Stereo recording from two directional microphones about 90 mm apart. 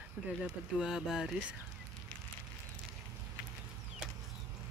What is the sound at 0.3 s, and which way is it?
Speech, 5° right (ahead or behind).